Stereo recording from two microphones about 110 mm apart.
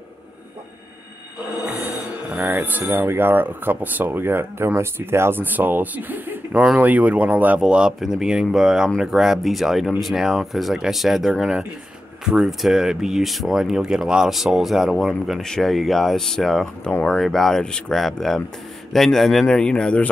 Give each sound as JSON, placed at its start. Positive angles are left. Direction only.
{"t": 1.6, "sound": "speech", "side_deg": -15}